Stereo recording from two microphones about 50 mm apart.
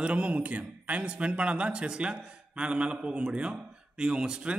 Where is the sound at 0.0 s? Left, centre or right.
Right.